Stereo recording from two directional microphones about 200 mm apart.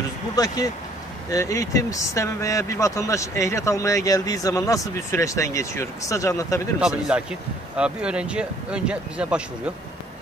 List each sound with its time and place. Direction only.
1.3 s speech: 15° left (ahead or behind)
6.8 s speech: 5° right (ahead or behind)